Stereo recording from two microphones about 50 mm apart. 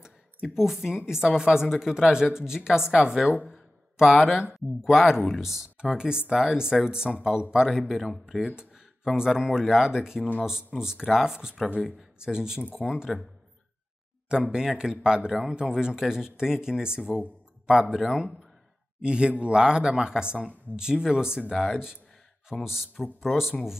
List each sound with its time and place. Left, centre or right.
0.6 s speech: centre
8.1 s speech: centre
9.1 s speech: centre
14.3 s speech: centre